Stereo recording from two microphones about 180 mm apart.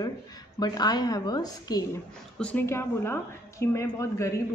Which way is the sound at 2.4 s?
10° left (ahead or behind).